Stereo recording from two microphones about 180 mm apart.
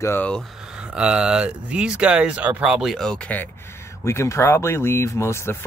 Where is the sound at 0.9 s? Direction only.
5° right (ahead or behind).